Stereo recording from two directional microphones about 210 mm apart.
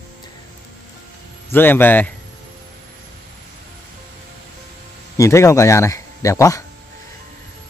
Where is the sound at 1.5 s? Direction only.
10° left (ahead or behind).